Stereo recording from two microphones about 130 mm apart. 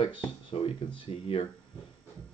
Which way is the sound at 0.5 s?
45° left (ahead or behind).